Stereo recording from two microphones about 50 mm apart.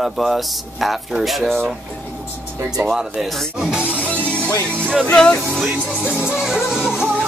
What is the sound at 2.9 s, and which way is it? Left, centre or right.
Music, centre.